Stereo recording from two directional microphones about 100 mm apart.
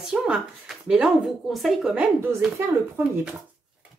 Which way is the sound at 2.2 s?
25° right (ahead or behind).